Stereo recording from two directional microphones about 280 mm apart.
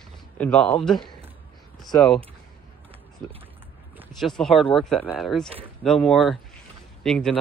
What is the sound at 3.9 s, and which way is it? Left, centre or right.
Speech, centre.